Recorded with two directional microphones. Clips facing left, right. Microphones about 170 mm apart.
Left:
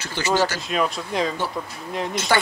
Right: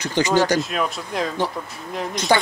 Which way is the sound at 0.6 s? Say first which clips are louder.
Right 1 dB; centre (ahead or behind).